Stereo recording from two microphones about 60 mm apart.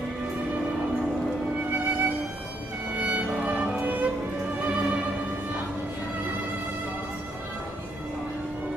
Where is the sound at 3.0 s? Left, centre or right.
Centre.